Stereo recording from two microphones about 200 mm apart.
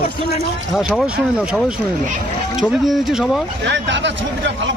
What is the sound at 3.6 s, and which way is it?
Speech, 60° right (ahead or behind).